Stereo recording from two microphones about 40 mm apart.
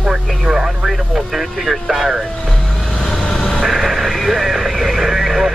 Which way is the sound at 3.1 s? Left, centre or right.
Centre.